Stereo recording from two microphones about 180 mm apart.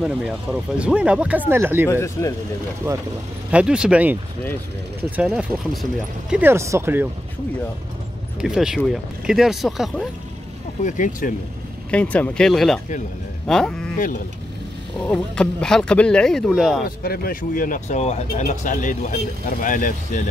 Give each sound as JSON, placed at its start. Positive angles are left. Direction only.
{"t": 0.0, "sound": "speech", "side_deg": -5}
{"t": 1.9, "sound": "speech", "side_deg": 15}
{"t": 2.8, "sound": "speech", "side_deg": -10}
{"t": 8.4, "sound": "speech", "side_deg": -5}
{"t": 10.8, "sound": "speech", "side_deg": 45}
{"t": 11.9, "sound": "speech", "side_deg": 10}
{"t": 15.0, "sound": "speech", "side_deg": 5}
{"t": 16.8, "sound": "speech", "side_deg": 55}